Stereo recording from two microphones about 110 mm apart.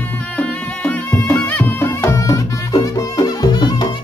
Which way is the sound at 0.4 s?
15° left (ahead or behind).